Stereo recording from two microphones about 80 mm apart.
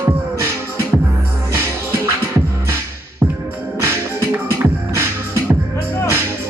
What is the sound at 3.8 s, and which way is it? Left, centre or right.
Music, right.